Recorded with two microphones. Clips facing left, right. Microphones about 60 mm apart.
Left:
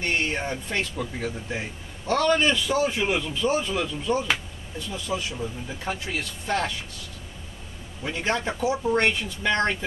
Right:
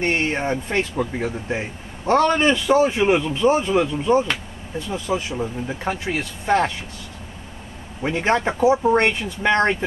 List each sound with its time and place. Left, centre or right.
0.0 s speech: right
8.0 s speech: right